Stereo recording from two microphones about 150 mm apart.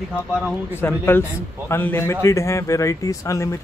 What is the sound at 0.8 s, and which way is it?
A man's voice, 15° left (ahead or behind).